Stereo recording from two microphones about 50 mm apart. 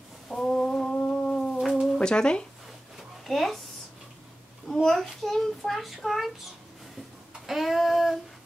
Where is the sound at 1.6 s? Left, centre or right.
Centre.